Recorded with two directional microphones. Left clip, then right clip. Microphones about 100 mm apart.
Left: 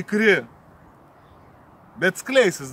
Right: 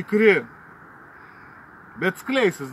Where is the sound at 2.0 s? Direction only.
25° left (ahead or behind).